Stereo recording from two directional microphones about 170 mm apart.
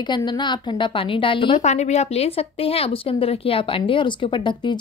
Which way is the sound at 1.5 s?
40° left (ahead or behind).